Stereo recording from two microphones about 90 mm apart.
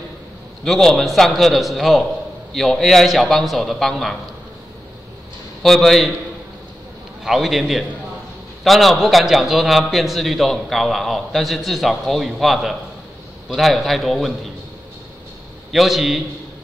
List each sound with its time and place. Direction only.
0.7 s a man's voice: 5° left (ahead or behind)
5.6 s a man's voice: 5° left (ahead or behind)
7.2 s a man's voice: centre (ahead or behind)
15.7 s a man's voice: centre (ahead or behind)